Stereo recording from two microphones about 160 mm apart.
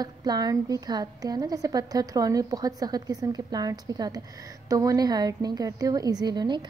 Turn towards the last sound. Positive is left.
turn(degrees=-25)  # may be behind; listen again after turning